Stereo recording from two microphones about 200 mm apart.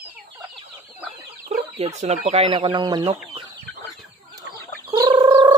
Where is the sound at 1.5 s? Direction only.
35° right (ahead or behind).